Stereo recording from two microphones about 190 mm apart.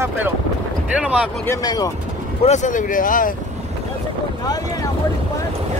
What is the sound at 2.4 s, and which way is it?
Speech, 40° left (ahead or behind).